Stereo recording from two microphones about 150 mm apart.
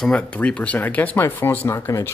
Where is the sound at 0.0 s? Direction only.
5° left (ahead or behind).